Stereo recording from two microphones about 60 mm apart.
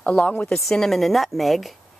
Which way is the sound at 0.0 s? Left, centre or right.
Centre.